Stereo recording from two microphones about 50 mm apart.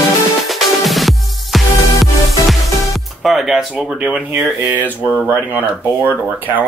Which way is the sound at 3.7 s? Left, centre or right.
Right.